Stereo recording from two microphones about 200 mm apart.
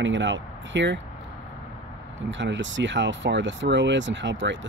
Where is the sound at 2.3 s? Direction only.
65° right (ahead or behind).